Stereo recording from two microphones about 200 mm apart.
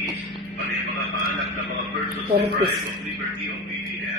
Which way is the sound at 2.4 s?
55° right (ahead or behind).